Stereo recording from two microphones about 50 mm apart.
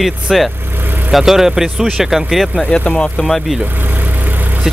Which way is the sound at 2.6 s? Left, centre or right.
Left.